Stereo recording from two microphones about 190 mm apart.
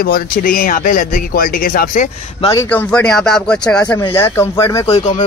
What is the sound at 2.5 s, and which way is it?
Speech, 10° left (ahead or behind).